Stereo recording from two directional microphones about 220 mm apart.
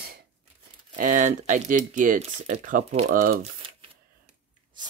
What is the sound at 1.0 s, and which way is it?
Speech, 40° right (ahead or behind).